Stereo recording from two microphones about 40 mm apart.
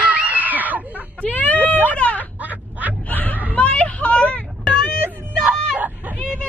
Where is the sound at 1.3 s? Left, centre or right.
Left.